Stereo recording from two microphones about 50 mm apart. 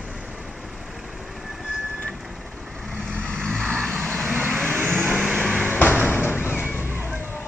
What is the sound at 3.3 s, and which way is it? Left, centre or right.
Vehicle, centre.